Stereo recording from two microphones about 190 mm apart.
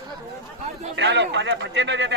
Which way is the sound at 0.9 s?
70° right (ahead or behind).